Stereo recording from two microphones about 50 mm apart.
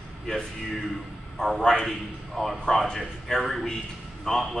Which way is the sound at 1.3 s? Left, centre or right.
Centre.